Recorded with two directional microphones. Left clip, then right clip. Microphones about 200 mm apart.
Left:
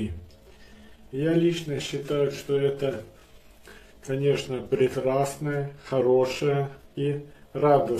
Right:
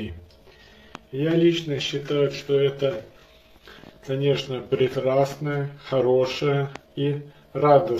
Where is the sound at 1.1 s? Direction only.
15° left (ahead or behind).